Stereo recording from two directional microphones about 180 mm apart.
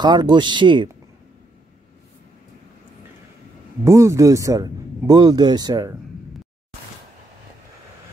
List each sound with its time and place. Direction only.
0.0 s speech: 25° right (ahead or behind)
3.8 s speech: 15° right (ahead or behind)